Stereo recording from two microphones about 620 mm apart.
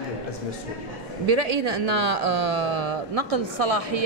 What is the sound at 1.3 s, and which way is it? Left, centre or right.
Speech, right.